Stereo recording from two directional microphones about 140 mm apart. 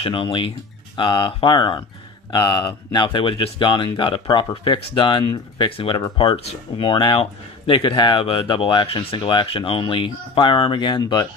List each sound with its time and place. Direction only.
0.0 s speech: 40° left (ahead or behind)